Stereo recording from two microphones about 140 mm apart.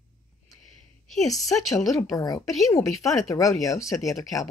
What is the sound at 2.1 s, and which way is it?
Speech, 25° left (ahead or behind).